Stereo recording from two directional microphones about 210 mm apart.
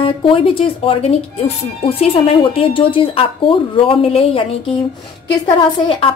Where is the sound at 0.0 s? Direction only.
25° left (ahead or behind).